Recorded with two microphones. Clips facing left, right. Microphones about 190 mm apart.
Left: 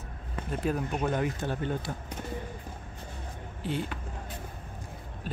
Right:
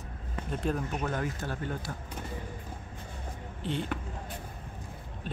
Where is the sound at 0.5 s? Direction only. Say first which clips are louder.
Left 2 dB; 5° left (ahead or behind).